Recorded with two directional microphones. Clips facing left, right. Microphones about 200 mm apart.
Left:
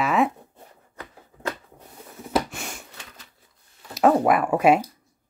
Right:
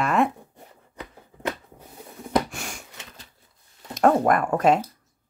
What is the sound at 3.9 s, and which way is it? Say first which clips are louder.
Speech: left 1 dB; 5° left (ahead or behind).